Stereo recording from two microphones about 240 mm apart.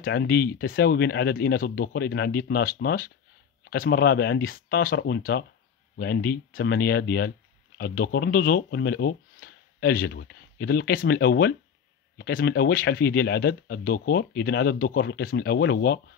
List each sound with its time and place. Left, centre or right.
0.0 s speech: left